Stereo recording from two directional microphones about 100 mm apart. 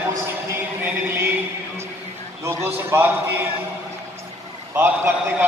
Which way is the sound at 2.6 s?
20° right (ahead or behind).